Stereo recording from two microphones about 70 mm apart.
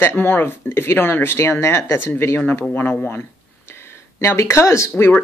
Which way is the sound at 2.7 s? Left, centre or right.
Centre.